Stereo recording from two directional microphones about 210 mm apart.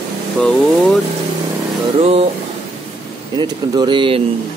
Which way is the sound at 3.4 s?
20° right (ahead or behind).